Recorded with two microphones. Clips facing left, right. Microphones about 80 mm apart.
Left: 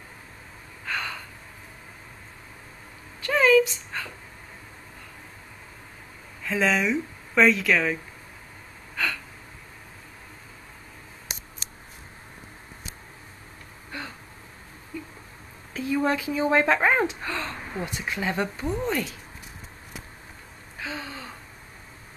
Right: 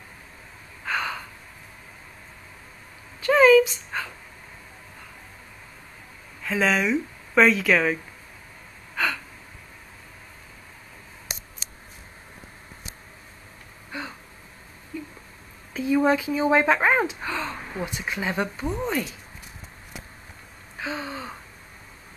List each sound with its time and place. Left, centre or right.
0.8 s gasp: centre
3.3 s a sound: centre
6.4 s speech: centre
8.9 s gasp: centre
15.7 s speech: centre
20.8 s gasp: centre